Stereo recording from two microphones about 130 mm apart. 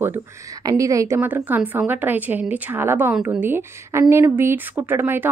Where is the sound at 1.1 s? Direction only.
15° right (ahead or behind).